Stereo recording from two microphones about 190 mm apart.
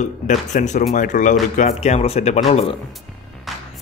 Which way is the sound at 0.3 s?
40° left (ahead or behind).